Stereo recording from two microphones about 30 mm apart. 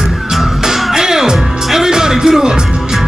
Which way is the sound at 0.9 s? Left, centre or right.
Centre.